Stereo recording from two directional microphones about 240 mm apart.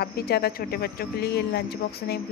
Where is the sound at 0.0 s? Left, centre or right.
Left.